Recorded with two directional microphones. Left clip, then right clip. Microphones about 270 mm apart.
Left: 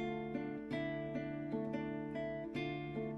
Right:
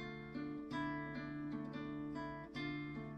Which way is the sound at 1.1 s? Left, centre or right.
Left.